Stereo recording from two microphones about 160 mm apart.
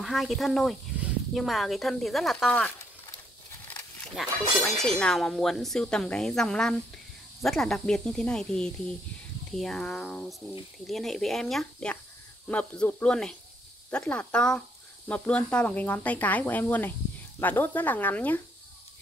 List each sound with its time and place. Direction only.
0.0 s speech: centre (ahead or behind)
3.7 s a sound: 10° left (ahead or behind)
4.2 s speech: 5° right (ahead or behind)